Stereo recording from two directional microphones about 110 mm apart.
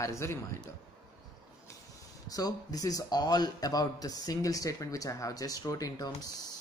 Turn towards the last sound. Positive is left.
turn(degrees=35)  # may be behind; listen again after turning